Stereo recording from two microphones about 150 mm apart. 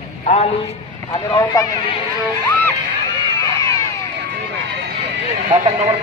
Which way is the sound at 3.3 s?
20° left (ahead or behind).